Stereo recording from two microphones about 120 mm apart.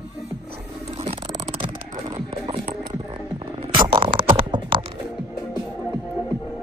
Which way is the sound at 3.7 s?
45° right (ahead or behind).